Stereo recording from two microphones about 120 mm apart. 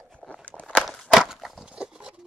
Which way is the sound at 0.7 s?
Centre (ahead or behind).